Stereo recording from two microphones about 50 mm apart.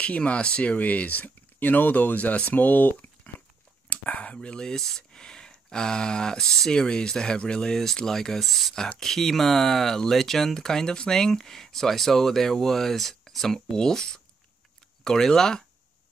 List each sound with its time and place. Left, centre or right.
0.0 s speech: left